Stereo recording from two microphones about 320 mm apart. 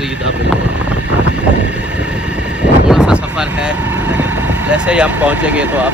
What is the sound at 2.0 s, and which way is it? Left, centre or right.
Vehicle, centre.